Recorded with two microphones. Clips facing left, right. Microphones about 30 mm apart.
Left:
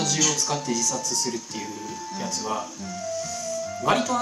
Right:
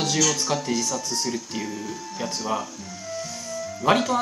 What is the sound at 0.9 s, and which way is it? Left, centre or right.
Speech, centre.